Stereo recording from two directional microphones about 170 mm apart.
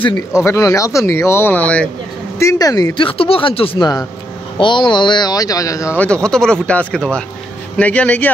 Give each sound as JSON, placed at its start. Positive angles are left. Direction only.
{"t": 0.3, "sound": "speech", "side_deg": 15}
{"t": 2.3, "sound": "speech", "side_deg": 20}
{"t": 6.0, "sound": "speech", "side_deg": 5}